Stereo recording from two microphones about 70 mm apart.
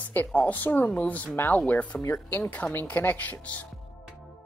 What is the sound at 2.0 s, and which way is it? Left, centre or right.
Speech, left.